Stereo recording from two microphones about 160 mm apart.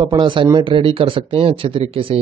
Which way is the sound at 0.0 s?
30° right (ahead or behind).